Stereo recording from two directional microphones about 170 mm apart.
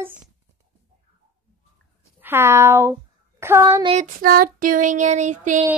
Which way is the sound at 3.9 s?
55° right (ahead or behind).